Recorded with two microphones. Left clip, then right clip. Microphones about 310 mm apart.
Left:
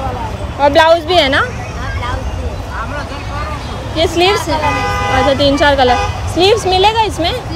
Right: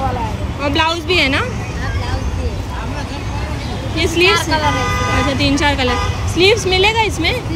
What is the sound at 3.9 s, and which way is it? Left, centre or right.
Speech, centre.